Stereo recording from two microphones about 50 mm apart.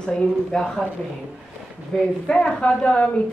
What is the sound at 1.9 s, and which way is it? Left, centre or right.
Speech, centre.